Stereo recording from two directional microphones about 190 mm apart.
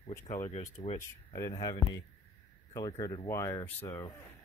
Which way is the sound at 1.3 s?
15° left (ahead or behind).